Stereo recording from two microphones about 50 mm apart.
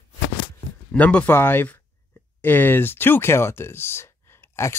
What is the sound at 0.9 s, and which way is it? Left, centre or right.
Speech, left.